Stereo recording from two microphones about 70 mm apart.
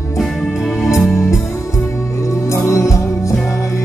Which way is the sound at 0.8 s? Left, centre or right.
Centre.